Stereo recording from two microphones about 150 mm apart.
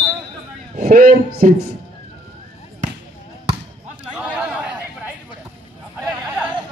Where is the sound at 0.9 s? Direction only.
90° right.